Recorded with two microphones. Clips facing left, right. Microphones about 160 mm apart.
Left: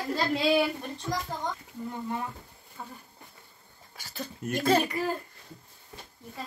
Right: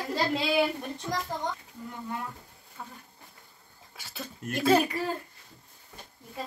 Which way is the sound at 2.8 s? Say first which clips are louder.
Left 1 dB; 5° left (ahead or behind).